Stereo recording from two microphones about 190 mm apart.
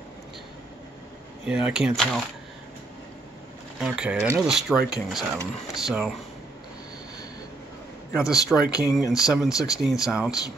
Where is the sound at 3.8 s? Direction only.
5° right (ahead or behind).